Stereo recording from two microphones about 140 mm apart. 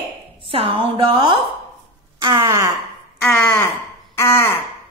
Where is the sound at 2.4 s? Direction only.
20° right (ahead or behind).